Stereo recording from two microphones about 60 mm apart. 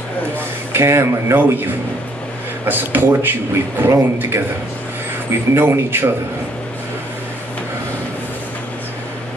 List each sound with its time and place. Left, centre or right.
0.7 s speech: right
3.8 s speech: right
5.5 s speech: right